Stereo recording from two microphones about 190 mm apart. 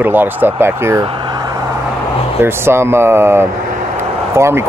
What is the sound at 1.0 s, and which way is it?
Vehicle, 25° right (ahead or behind).